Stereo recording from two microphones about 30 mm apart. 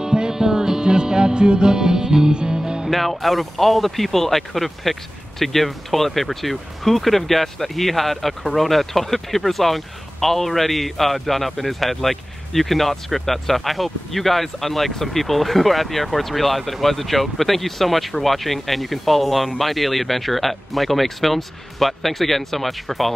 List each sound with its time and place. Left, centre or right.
0.0 s music: right
2.9 s speech: centre